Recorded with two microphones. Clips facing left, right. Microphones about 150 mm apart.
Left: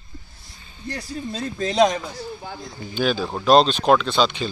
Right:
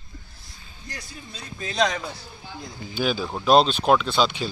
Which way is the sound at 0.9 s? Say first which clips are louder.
Left 11 dB; 40° left (ahead or behind).